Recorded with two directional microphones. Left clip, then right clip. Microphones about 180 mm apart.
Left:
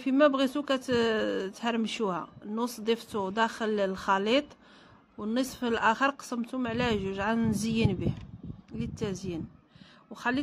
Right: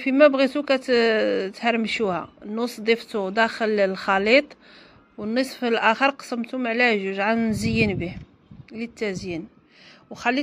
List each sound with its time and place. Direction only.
0.0 s speech: 5° right (ahead or behind)